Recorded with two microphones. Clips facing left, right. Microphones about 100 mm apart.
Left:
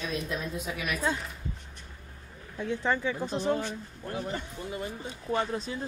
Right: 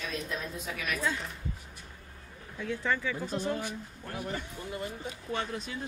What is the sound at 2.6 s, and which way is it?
A woman's voice, 25° left (ahead or behind).